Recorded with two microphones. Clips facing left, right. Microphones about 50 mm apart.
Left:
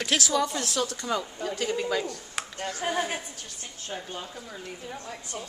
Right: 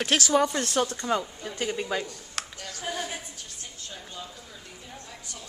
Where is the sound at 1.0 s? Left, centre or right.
Centre.